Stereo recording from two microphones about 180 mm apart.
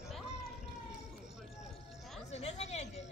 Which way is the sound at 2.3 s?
35° left (ahead or behind).